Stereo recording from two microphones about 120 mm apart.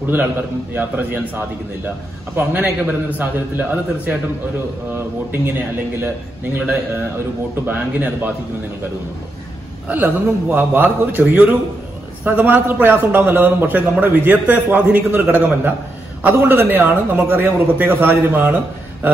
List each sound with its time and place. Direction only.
0.7 s a man's voice: 15° right (ahead or behind)
6.5 s a man's voice: 15° right (ahead or behind)
9.8 s a man's voice: 15° right (ahead or behind)